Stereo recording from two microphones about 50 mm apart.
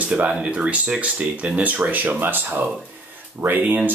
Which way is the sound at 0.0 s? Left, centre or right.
Right.